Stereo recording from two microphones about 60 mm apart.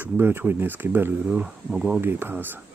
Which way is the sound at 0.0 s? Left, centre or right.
Right.